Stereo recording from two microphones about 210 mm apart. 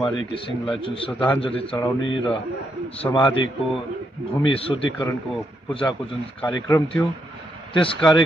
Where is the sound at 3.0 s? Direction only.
20° left (ahead or behind).